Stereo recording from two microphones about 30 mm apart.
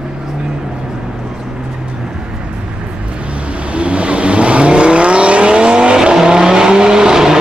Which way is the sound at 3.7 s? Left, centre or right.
Right.